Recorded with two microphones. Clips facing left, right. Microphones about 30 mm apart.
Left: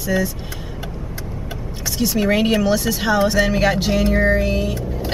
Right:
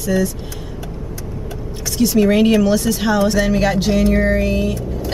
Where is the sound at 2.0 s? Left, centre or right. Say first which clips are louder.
Right 4 dB; centre.